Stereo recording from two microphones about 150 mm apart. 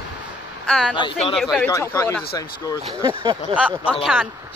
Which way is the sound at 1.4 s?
Centre (ahead or behind).